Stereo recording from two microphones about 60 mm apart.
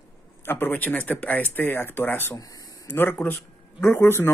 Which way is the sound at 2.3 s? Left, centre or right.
Left.